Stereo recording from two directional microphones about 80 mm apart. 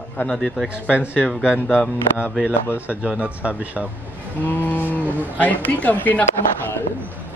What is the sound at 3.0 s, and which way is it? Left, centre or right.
Speech, centre.